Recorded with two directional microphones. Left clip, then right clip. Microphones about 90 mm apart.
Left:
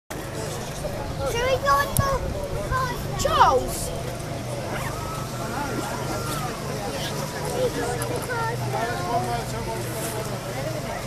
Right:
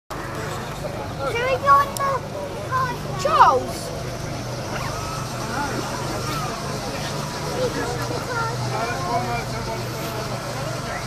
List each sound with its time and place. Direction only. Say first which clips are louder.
1.3 s vehicle: right 4 dB; 50° left (ahead or behind)
3.2 s speech: right 3 dB; 45° left (ahead or behind)